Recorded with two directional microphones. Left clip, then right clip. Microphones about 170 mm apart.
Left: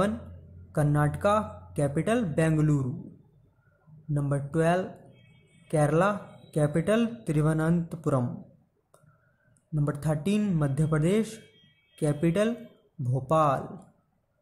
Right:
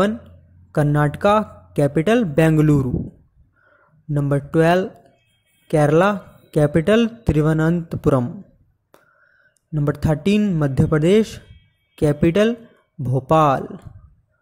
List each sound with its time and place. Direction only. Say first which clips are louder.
0.9 s speech: right 8 dB; 35° right (ahead or behind)
4.1 s speech: right 10 dB; 35° right (ahead or behind)
9.8 s speech: right 9 dB; 35° right (ahead or behind)